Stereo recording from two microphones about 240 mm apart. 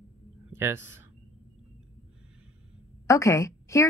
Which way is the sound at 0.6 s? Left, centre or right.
Centre.